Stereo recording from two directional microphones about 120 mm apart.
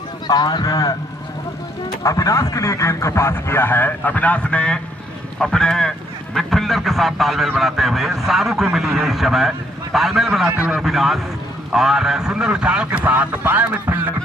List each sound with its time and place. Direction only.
0.3 s speech: 35° left (ahead or behind)
2.0 s a man's voice: 25° left (ahead or behind); by 14.0 s 15° right (ahead or behind)